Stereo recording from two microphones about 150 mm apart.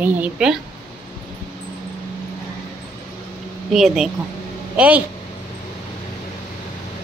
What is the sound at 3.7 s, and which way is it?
A woman's voice, centre (ahead or behind).